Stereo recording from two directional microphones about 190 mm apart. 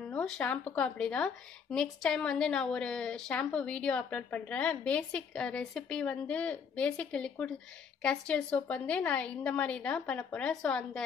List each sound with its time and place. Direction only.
0.1 s speech: 5° left (ahead or behind)